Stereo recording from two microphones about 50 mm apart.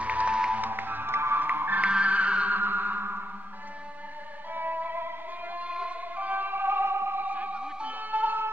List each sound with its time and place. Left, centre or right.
0.0 s music: right
0.6 s music: right
1.4 s music: right
1.8 s music: right
2.5 s music: right
4.6 s music: right
5.6 s music: right
7.2 s music: right